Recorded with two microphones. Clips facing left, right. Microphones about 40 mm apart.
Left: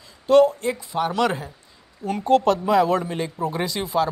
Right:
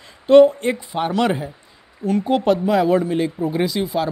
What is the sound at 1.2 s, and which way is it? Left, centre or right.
Speech, centre.